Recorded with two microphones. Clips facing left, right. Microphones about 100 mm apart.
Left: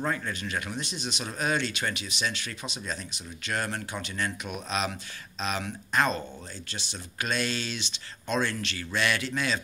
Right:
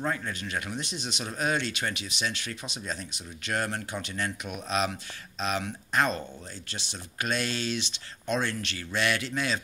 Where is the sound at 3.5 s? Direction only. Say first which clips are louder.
Right 1 dB; 30° right (ahead or behind).